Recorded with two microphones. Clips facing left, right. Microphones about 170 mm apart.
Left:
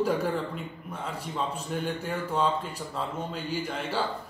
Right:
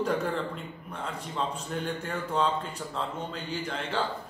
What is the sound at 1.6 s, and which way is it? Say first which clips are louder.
Speech: left 2 dB; 5° left (ahead or behind).